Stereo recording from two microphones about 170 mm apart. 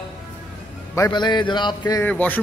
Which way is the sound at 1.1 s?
25° left (ahead or behind).